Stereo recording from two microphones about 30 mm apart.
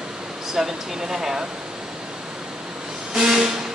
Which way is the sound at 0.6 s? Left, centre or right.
Centre.